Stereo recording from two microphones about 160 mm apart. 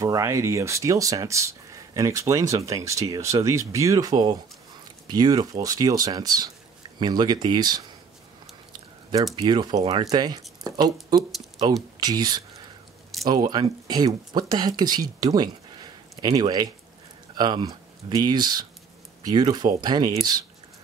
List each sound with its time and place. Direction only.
0.0 s speech: 20° right (ahead or behind)
9.4 s speech: 25° right (ahead or behind)